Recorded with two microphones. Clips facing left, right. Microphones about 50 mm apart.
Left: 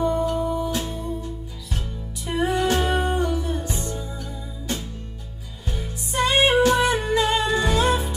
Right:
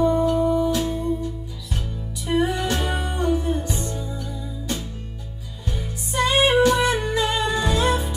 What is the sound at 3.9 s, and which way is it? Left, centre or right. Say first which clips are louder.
Music: right 1 dB; left.